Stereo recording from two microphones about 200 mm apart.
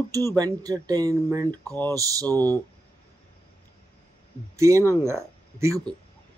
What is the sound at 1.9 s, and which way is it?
Speech, 15° right (ahead or behind).